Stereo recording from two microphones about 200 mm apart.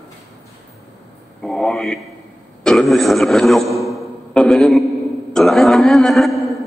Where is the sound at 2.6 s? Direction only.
Centre (ahead or behind).